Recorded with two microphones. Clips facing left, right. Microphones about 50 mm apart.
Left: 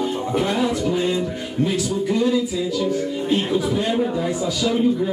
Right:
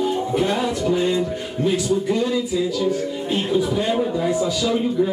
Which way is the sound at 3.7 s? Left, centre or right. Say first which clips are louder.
Even; centre.